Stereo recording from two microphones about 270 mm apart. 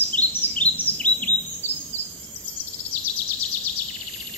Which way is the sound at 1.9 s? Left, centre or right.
Left.